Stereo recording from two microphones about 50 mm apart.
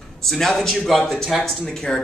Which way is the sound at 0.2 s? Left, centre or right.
Centre.